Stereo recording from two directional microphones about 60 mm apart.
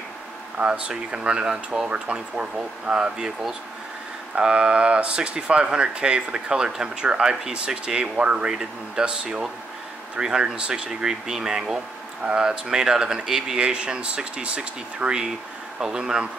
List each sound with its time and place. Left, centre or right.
0.6 s speech: centre